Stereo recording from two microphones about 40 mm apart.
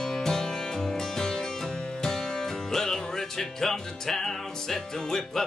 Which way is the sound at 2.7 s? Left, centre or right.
Centre.